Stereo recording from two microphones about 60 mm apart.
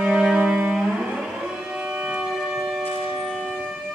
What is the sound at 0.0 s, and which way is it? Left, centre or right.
Music, centre.